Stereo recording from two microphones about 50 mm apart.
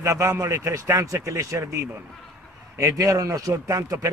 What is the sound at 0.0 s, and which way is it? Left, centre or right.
A man's voice, right.